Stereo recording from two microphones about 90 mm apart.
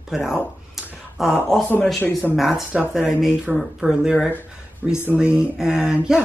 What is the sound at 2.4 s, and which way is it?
Speech, 5° right (ahead or behind).